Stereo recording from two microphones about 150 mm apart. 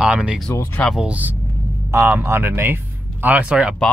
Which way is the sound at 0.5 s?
10° left (ahead or behind).